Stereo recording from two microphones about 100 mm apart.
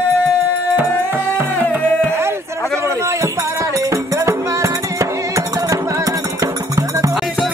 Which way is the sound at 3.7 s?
35° right (ahead or behind).